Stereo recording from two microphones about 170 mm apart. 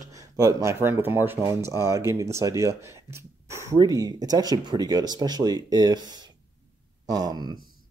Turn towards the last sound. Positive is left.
turn(degrees=-25)  # may be behind; listen again after turning